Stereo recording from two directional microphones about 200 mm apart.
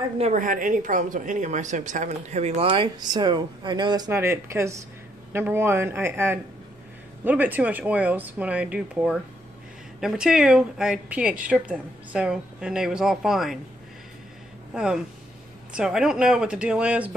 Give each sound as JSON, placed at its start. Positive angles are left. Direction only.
{"t": 0.2, "sound": "a woman's voice", "side_deg": -40}
{"t": 14.7, "sound": "a woman's voice", "side_deg": -5}